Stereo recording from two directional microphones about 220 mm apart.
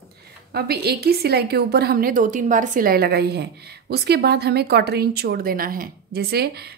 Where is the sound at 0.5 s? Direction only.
45° right (ahead or behind).